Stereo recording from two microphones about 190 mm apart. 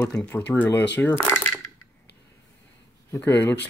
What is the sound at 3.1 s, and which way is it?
Speech, 10° left (ahead or behind).